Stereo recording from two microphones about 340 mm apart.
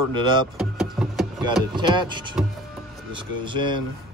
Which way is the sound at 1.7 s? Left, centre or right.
Centre.